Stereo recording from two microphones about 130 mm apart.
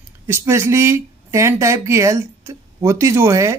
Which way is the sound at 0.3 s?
20° right (ahead or behind).